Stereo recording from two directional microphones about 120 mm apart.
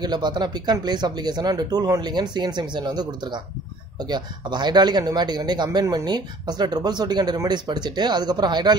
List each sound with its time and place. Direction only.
0.0 s a man's voice: 35° right (ahead or behind)